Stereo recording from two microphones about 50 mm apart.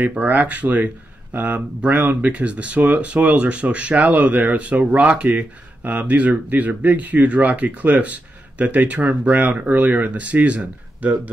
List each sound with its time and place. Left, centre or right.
0.2 s speech: right